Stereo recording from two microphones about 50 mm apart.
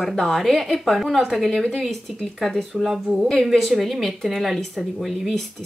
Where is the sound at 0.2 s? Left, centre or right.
Centre.